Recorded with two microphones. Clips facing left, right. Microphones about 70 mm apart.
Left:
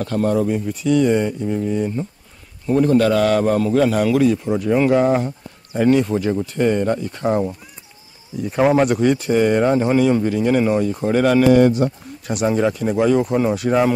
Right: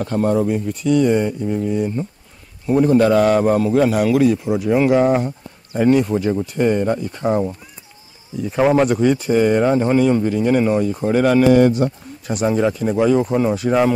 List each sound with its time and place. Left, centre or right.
0.0 s a man's voice: centre
0.7 s speech: centre
2.6 s a man's voice: centre